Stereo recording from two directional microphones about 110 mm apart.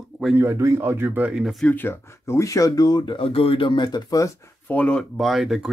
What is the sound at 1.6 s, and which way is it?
Speech, 20° left (ahead or behind).